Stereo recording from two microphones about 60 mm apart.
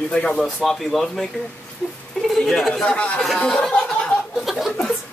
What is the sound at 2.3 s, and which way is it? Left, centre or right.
Speech, centre.